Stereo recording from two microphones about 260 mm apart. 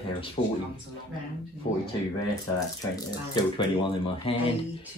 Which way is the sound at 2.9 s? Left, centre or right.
Centre.